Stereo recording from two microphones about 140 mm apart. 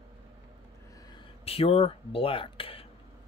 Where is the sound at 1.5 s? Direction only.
45° left (ahead or behind).